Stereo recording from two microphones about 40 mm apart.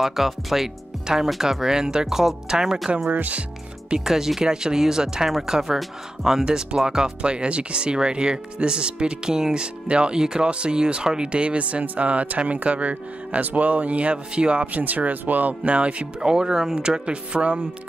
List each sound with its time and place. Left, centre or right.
0.0 s speech: centre
3.1 s speech: right
4.0 s speech: centre
7.2 s speech: right
15.7 s speech: right
16.2 s speech: centre